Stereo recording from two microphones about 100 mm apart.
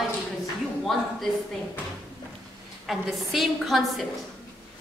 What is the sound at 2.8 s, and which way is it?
A woman's voice, centre (ahead or behind).